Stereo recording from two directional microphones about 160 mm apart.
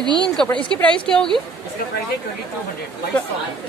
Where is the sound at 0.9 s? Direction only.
5° left (ahead or behind).